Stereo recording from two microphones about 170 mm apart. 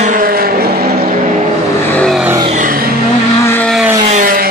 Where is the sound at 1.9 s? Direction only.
5° left (ahead or behind).